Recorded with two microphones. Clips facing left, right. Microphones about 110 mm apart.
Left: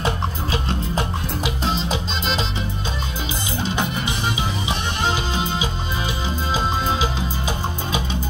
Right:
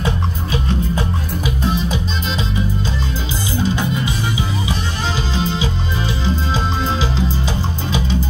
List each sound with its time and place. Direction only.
0.0 s music: 25° left (ahead or behind)
3.5 s music: 20° left (ahead or behind)
5.3 s music: 15° left (ahead or behind)